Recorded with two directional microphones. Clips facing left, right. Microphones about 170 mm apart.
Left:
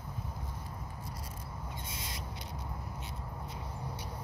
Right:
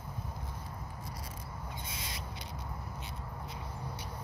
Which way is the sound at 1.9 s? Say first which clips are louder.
Even; 85° right.